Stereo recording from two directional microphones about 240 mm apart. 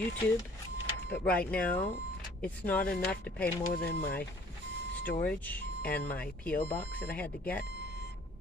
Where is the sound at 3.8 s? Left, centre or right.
Left.